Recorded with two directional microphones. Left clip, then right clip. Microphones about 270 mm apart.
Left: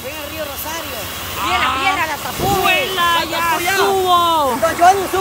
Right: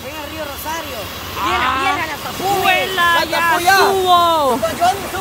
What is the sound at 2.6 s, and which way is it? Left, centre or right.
Vehicle, centre.